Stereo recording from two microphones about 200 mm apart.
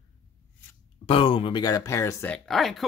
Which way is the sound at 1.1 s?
25° left (ahead or behind).